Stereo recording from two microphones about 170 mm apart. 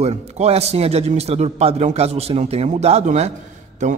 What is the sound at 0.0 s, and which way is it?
A man's voice, 40° right (ahead or behind).